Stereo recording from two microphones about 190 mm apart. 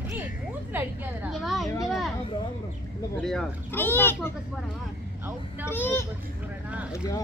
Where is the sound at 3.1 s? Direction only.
Centre (ahead or behind).